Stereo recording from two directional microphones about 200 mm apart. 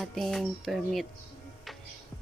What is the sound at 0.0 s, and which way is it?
Speech, centre (ahead or behind).